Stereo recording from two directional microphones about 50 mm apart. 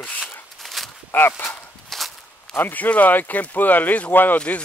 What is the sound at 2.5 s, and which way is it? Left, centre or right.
Speech, left.